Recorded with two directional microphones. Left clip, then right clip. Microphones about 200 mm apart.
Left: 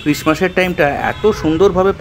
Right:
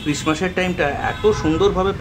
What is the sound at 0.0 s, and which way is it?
Speech, 30° left (ahead or behind).